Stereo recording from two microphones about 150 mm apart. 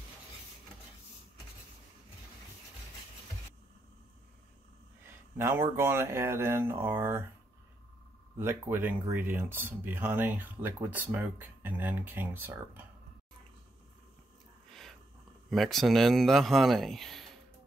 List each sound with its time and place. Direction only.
5.4 s speech: 15° right (ahead or behind)
8.4 s speech: 15° right (ahead or behind)
14.7 s a sound: centre (ahead or behind)
15.5 s speech: centre (ahead or behind)